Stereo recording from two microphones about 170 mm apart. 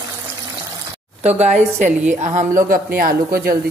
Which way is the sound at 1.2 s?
40° right (ahead or behind).